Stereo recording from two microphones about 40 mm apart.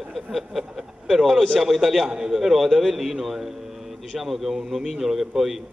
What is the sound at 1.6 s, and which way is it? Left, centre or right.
Speech, centre.